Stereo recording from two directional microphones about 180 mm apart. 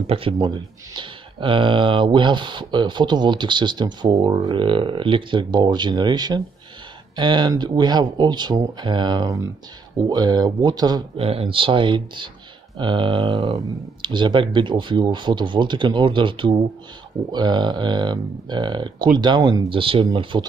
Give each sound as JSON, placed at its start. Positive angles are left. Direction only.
{"t": 0.0, "sound": "speech", "side_deg": -30}